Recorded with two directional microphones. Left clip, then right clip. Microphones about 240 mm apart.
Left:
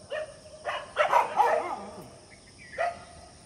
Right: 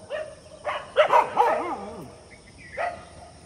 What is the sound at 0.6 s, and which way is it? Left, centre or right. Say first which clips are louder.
Dog: right 6 dB; right.